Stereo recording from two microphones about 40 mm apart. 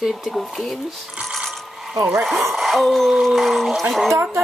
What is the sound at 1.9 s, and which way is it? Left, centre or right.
Speech, centre.